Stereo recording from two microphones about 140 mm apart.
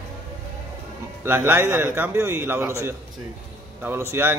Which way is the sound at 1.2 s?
15° right (ahead or behind).